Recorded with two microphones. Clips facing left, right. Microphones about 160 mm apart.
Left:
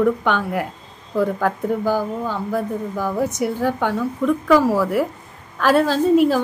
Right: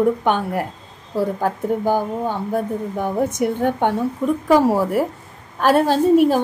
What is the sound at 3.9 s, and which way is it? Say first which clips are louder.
A woman's voice: even; 40° right (ahead or behind).